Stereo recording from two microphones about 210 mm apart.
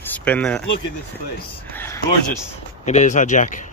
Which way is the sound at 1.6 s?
10° left (ahead or behind).